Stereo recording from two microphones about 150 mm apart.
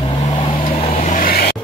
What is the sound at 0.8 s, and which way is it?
Vehicle, 55° left (ahead or behind).